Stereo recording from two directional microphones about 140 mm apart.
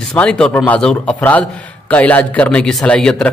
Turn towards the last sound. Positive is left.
turn(degrees=5)  # may be behind; listen again after turning